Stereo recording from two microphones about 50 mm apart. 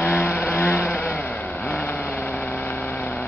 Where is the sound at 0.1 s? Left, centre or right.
Left.